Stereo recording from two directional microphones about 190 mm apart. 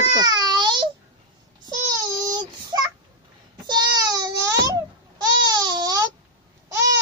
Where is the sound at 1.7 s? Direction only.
20° right (ahead or behind).